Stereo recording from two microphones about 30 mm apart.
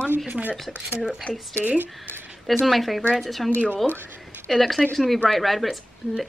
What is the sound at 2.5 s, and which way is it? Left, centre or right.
A woman's voice, centre.